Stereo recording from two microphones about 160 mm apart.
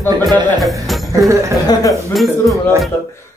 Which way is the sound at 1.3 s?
20° right (ahead or behind).